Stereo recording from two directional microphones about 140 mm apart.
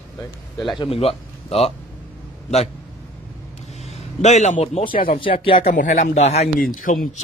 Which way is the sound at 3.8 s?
55° left (ahead or behind).